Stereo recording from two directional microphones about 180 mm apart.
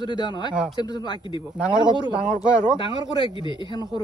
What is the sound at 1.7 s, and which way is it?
Speech, 25° right (ahead or behind).